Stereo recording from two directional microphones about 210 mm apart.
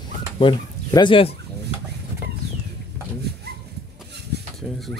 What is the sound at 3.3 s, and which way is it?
Dog, 50° right (ahead or behind).